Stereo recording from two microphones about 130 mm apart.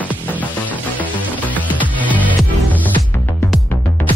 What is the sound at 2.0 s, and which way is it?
Music, 10° right (ahead or behind).